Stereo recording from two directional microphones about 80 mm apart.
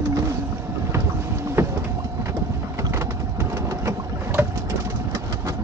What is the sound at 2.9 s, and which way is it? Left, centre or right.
Vehicle, right.